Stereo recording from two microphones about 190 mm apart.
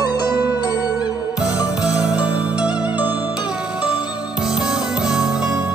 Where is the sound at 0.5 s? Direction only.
20° left (ahead or behind).